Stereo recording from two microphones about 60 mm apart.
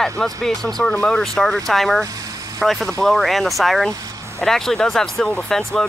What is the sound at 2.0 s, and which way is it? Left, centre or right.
Vehicle, right.